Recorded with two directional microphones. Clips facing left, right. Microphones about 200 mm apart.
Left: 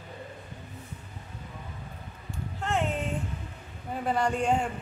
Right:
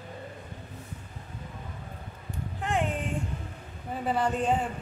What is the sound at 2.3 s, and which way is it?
Music, 15° right (ahead or behind).